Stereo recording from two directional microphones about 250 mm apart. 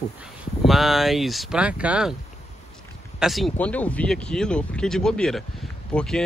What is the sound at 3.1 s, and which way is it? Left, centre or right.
Speech, centre.